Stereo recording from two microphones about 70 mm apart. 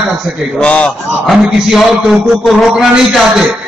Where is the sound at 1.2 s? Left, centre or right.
Centre.